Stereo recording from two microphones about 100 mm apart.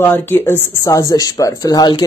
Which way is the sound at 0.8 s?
35° left (ahead or behind).